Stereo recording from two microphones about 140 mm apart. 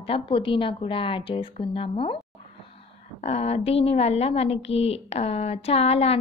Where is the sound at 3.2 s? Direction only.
45° left (ahead or behind).